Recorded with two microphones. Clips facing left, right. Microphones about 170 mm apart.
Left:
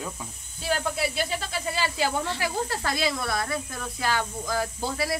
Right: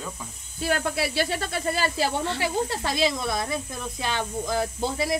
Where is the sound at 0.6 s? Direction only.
65° right (ahead or behind).